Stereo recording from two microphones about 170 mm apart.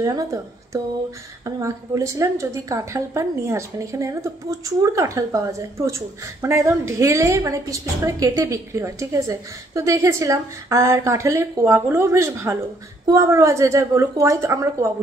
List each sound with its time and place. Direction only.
0.0 s a woman's voice: 20° right (ahead or behind)